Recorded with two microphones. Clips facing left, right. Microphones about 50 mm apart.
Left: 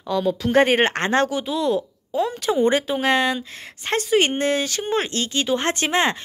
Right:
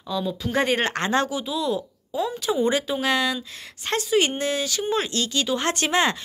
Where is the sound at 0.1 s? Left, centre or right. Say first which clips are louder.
Left 6 dB; left.